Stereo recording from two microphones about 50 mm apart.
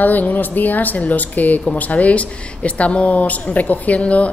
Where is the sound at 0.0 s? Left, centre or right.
Left.